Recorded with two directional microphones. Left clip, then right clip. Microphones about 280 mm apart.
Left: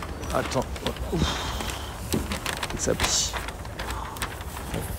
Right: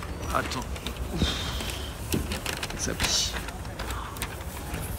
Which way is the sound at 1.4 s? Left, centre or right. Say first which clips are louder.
Left 2 dB; left.